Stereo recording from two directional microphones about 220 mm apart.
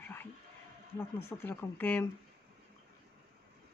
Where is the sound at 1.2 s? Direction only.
10° left (ahead or behind).